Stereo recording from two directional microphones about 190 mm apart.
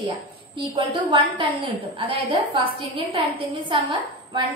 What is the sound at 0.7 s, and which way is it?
A woman's voice, 25° right (ahead or behind).